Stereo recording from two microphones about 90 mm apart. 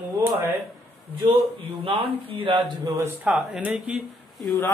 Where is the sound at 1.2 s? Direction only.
85° right.